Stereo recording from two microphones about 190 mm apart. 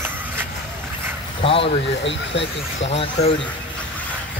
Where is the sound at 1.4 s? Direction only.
30° left (ahead or behind).